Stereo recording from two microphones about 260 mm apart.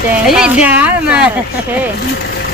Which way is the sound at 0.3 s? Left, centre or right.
Centre.